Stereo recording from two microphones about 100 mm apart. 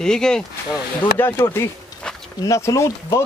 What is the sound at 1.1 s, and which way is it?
Speech, 20° left (ahead or behind).